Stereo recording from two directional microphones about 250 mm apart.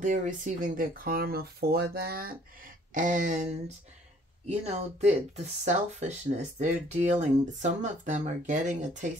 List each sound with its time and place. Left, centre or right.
0.0 s speech: right